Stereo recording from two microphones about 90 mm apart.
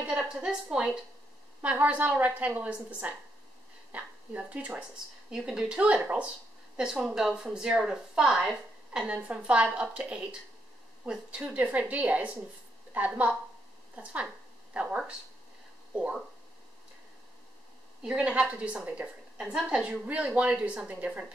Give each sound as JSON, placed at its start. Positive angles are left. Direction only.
{"t": 0.0, "sound": "a woman's voice", "side_deg": -10}
{"t": 18.0, "sound": "a woman's voice", "side_deg": -10}